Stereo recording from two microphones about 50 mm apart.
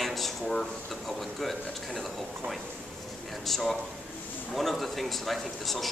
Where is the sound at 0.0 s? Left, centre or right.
Centre.